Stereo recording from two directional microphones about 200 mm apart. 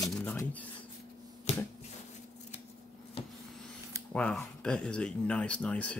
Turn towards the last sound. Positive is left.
turn(degrees=5)  # may be behind; listen again after turning